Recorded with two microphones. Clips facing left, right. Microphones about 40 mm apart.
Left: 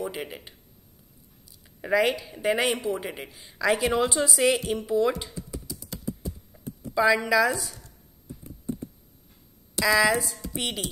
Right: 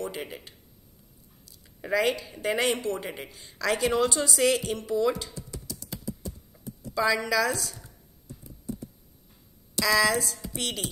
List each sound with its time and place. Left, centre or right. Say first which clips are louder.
0.0 s a woman's voice: left 2 dB; centre
5.2 s computer keyboard: left 2 dB; centre
6.9 s a woman's voice: left 4 dB; centre
8.5 s computer keyboard: left 3 dB; left
9.8 s a woman's voice: left 2 dB; centre
10.5 s music: left 3 dB; centre